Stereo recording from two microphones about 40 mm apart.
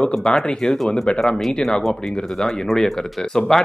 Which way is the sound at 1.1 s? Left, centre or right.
Left.